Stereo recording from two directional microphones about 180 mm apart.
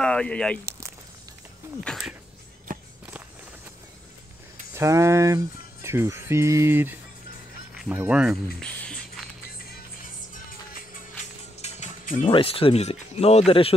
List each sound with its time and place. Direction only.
0.0 s speech: 5° left (ahead or behind)
0.7 s a sound: 15° right (ahead or behind)
1.8 s speech: centre (ahead or behind)
4.7 s speech: 15° right (ahead or behind); by 9.2 s 5° left (ahead or behind)
9.7 s music: 50° left (ahead or behind)
12.3 s speech: 30° left (ahead or behind)